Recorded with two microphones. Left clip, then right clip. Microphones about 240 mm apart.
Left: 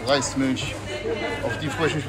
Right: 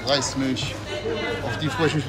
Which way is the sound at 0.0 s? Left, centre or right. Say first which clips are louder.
Left 1 dB; centre.